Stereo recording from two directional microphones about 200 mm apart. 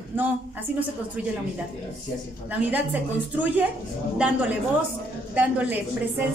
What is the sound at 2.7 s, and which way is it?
A woman's voice, 5° right (ahead or behind).